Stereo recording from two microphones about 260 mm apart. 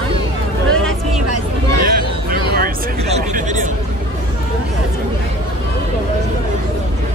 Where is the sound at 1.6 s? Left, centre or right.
Right.